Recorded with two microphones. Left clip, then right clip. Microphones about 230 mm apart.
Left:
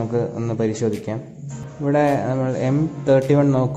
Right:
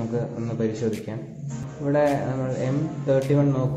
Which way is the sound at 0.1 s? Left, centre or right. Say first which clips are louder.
Left 6 dB; left.